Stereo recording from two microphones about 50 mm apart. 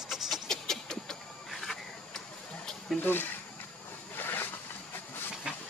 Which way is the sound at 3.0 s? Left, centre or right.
Left.